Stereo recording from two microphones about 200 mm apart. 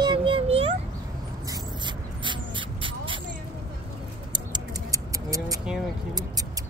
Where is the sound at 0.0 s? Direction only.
25° right (ahead or behind).